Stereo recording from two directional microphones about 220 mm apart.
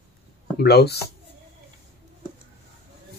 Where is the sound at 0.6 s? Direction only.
50° left (ahead or behind).